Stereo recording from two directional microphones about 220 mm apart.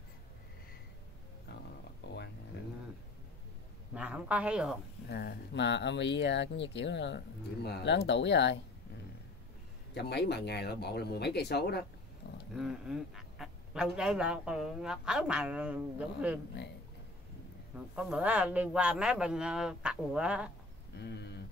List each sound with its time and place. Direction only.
2.0 s a sound: 50° left (ahead or behind)
3.9 s speech: 5° right (ahead or behind)
5.1 s speech: 50° left (ahead or behind)
9.9 s speech: 50° left (ahead or behind)
12.2 s a sound: 50° left (ahead or behind)
12.5 s speech: centre (ahead or behind)
17.7 s speech: 5° right (ahead or behind)
21.0 s speech: 50° left (ahead or behind)